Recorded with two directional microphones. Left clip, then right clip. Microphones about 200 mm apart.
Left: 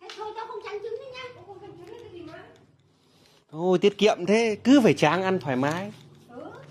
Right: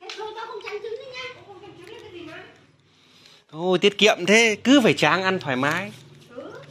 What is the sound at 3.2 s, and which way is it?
Speech, 20° left (ahead or behind).